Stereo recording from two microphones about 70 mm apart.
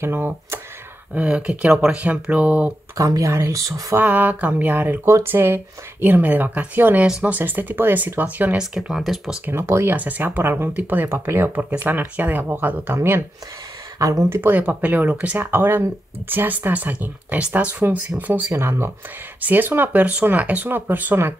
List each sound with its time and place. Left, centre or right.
0.0 s speech: right
1.1 s speech: centre
3.0 s speech: right
4.0 s speech: right
7.1 s speech: centre
7.3 s speech: right
8.5 s speech: centre
9.5 s speech: right
9.9 s speech: right
13.9 s speech: right
14.3 s speech: right
14.6 s speech: right
15.3 s speech: right
18.5 s speech: right